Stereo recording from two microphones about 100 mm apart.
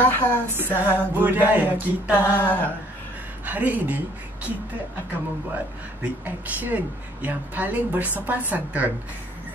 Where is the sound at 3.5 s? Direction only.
15° right (ahead or behind).